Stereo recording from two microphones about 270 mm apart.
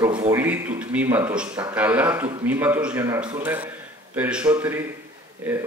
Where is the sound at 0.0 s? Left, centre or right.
Centre.